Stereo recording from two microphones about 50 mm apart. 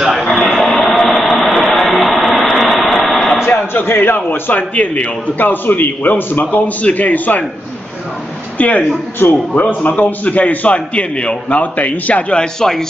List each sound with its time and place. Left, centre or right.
0.2 s a sound: centre
2.4 s vehicle: centre
3.8 s a man's voice: left
8.5 s a man's voice: left
12.4 s speech: centre